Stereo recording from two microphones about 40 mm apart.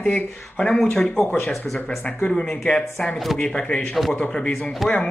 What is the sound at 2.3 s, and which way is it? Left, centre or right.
Speech, left.